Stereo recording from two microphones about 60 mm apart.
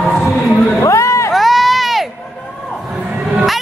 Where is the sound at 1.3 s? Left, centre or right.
Centre.